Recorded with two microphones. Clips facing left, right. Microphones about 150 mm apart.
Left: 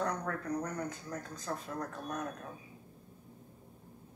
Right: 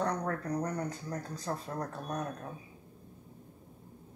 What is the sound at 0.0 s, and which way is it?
Speech, 35° right (ahead or behind).